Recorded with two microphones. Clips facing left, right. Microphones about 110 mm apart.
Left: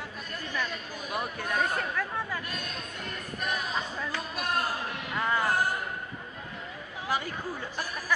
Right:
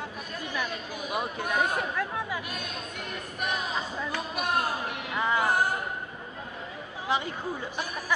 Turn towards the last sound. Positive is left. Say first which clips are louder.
# right 2 dB
turn(degrees=-20)  # may be behind; listen again after turning